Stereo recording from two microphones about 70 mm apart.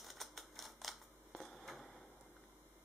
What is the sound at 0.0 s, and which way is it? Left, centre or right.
Typewriter, centre.